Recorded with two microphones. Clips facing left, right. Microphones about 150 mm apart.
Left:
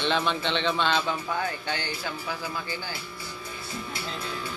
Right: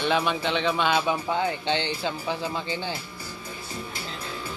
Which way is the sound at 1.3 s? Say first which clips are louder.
Right 5 dB; 20° right (ahead or behind).